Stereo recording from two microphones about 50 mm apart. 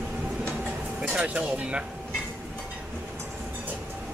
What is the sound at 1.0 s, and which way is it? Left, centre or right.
Speech, right.